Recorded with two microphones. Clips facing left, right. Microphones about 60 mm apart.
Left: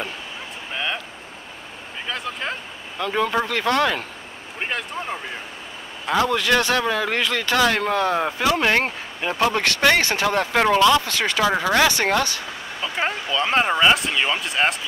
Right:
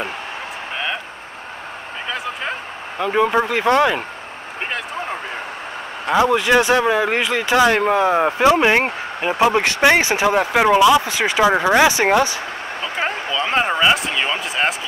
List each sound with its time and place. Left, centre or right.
2.0 s a sound: centre
3.0 s speech: centre
6.1 s speech: centre
12.9 s speech: centre